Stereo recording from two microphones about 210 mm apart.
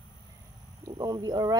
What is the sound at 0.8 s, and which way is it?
Speech, 20° right (ahead or behind).